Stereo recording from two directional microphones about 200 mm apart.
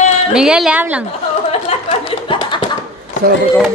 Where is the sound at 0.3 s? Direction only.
5° right (ahead or behind).